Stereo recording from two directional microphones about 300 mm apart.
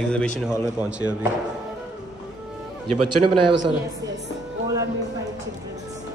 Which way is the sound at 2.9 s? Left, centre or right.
Right.